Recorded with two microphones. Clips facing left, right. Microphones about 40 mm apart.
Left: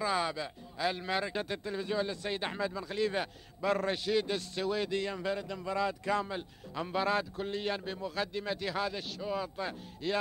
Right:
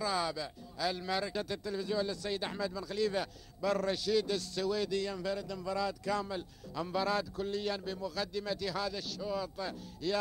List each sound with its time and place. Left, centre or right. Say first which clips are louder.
0.0 s speech: left 2 dB; left